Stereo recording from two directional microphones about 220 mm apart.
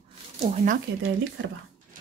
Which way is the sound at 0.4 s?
30° right (ahead or behind).